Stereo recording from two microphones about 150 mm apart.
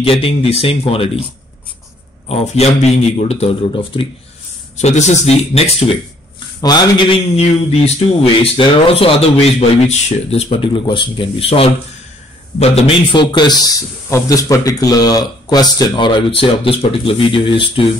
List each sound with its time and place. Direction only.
0.0 s a man's voice: 40° left (ahead or behind)
2.2 s a man's voice: 45° left (ahead or behind)
4.7 s a man's voice: 50° left (ahead or behind)
6.6 s a man's voice: 25° left (ahead or behind)
7.3 s a man's voice: 40° left (ahead or behind)